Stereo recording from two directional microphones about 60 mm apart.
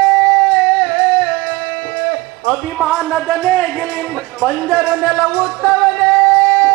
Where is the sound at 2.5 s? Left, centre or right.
Left.